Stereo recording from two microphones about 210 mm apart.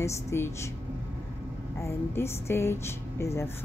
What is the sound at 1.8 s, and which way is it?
Speech, 10° left (ahead or behind).